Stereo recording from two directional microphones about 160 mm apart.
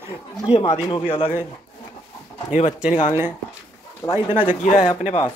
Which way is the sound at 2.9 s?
45° left (ahead or behind).